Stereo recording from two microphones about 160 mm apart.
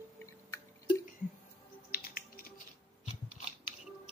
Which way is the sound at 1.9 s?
70° left (ahead or behind).